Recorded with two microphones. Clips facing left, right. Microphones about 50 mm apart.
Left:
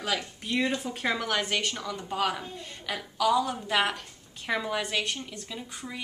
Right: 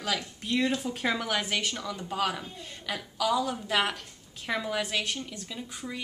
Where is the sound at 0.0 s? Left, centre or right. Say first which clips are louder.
Left 1 dB; centre.